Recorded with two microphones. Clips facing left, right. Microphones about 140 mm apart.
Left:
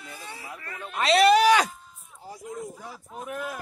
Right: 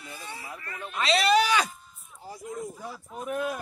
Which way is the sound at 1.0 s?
55° left (ahead or behind).